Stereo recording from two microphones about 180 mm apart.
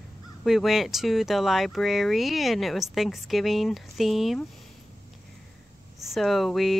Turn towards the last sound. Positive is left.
turn(degrees=0)  # may be behind; listen again after turning